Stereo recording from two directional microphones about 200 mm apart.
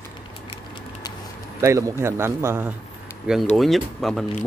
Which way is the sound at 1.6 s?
15° right (ahead or behind).